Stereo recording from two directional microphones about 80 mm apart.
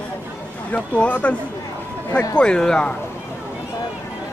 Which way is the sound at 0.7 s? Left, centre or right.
Centre.